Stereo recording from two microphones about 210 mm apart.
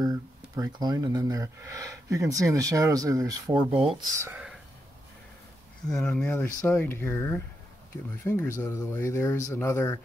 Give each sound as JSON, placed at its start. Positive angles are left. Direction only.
{"t": 0.0, "sound": "speech", "side_deg": -20}
{"t": 4.2, "sound": "speech", "side_deg": -5}
{"t": 5.9, "sound": "speech", "side_deg": 5}